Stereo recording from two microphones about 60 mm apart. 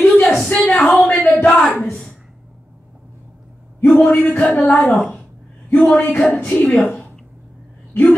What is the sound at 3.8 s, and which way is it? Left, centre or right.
A man's voice, left.